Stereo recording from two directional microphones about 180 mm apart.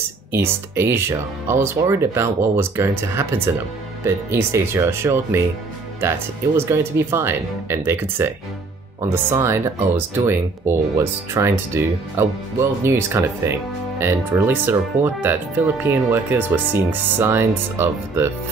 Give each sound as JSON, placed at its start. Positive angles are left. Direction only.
{"t": 0.3, "sound": "speech", "side_deg": -15}